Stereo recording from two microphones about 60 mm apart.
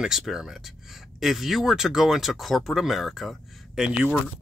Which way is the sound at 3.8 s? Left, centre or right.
Centre.